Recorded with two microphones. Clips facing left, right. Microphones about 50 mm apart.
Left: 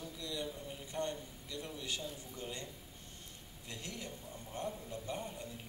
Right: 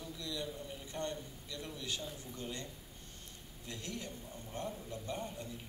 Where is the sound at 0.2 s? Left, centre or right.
Left.